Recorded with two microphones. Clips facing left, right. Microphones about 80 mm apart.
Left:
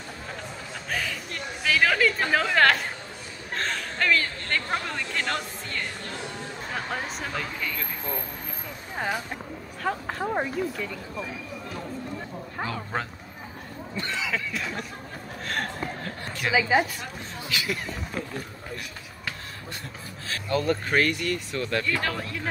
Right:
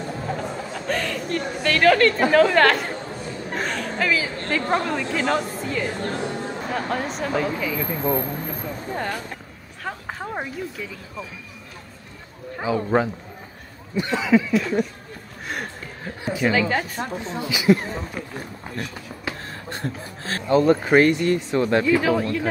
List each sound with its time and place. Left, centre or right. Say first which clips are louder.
0.8 s speech: right 6 dB; centre
8.9 s speech: left 1 dB; centre
12.6 s speech: right 12 dB; centre
14.5 s speech: right 11 dB; centre
15.4 s a sound: left 1 dB; centre
16.5 s speech: left 4 dB; centre
17.5 s speech: right 12 dB; centre
19.7 s speech: right 8 dB; right
20.8 s speech: right 8 dB; right
21.8 s speech: right 9 dB; centre